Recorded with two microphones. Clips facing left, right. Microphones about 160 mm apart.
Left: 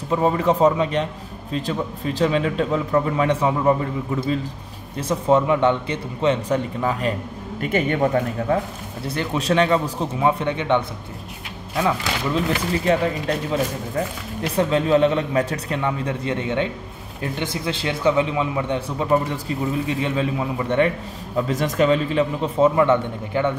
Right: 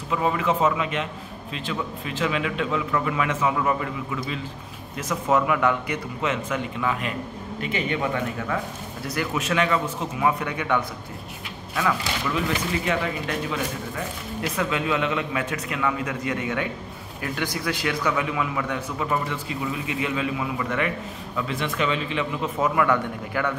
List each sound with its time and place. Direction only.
0.1 s a man's voice: 35° left (ahead or behind)
7.6 s a man's voice: 50° left (ahead or behind); by 23.5 s 25° left (ahead or behind)